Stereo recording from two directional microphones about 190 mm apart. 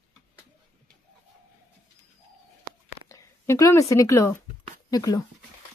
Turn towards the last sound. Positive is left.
turn(degrees=20)  # may be behind; listen again after turning